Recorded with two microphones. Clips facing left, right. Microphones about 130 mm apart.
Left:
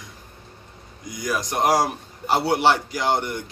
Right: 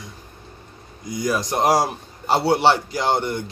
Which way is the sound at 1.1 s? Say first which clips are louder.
Right 4 dB; 30° right (ahead or behind).